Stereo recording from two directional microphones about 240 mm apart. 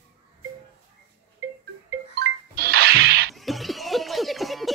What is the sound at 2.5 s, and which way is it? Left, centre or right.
Music, right.